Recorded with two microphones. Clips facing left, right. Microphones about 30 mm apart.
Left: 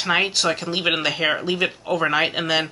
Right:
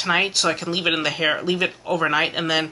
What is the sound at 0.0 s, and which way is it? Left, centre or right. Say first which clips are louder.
Speech: even; centre.